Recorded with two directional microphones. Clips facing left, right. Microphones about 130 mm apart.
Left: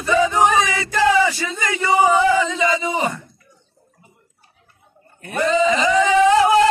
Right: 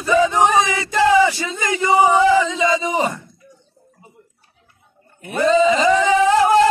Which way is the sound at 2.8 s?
25° right (ahead or behind).